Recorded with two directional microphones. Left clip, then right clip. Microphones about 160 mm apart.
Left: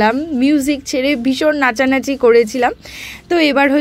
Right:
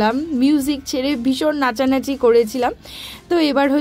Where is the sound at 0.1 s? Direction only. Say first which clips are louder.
Left 3 dB; 10° left (ahead or behind).